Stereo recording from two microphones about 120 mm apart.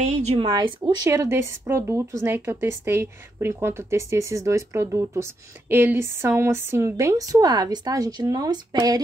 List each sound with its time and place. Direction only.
0.1 s speech: 65° right (ahead or behind)
0.5 s speech: 35° right (ahead or behind)
1.0 s speech: 25° right (ahead or behind)